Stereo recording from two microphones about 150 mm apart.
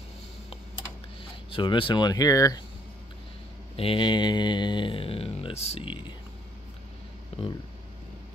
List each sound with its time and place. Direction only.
1.5 s speech: 35° left (ahead or behind)
3.7 s speech: 35° left (ahead or behind)